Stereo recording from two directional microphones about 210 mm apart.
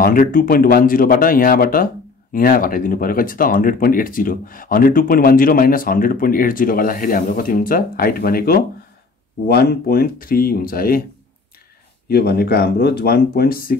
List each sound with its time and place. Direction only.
0.0 s speech: 40° left (ahead or behind)
12.1 s speech: 50° left (ahead or behind)